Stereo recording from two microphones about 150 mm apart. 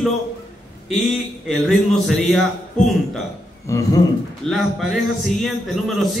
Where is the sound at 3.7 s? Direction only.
20° left (ahead or behind).